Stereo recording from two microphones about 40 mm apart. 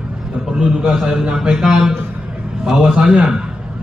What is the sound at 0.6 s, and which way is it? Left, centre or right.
A man's voice, centre.